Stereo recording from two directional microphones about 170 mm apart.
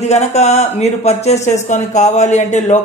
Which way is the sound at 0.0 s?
40° left (ahead or behind).